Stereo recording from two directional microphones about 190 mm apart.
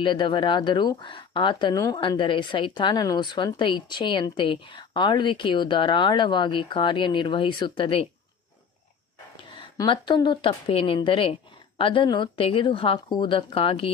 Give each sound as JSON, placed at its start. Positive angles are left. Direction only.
{"t": 0.0, "sound": "speech", "side_deg": 25}
{"t": 9.4, "sound": "a woman's voice", "side_deg": 25}